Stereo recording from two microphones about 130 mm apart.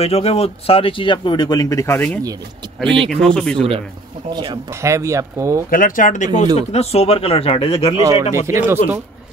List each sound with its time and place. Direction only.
0.0 s speech: 50° left (ahead or behind); by 2.1 s 15° left (ahead or behind)
3.1 s speech: 5° left (ahead or behind)
4.3 s speech: 35° right (ahead or behind)
4.8 s speech: 20° right (ahead or behind)
5.7 s speech: 90° left; by 7.9 s 45° left (ahead or behind)
8.0 s speech: 25° right (ahead or behind)